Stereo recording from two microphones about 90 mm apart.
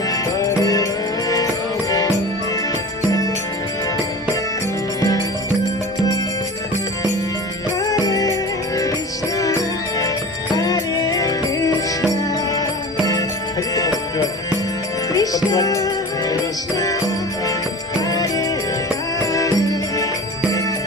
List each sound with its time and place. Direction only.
0.1 s music: 40° left (ahead or behind)
7.8 s music: 40° left (ahead or behind)
13.7 s music: 45° left (ahead or behind)
18.0 s music: 45° left (ahead or behind)